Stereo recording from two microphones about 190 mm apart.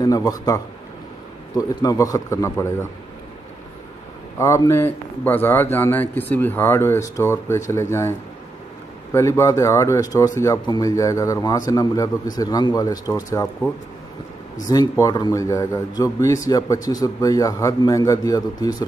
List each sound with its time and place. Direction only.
0.0 s a man's voice: 20° left (ahead or behind)
1.6 s speech: 20° left (ahead or behind)
4.4 s speech: 15° left (ahead or behind)
14.7 s speech: 20° left (ahead or behind)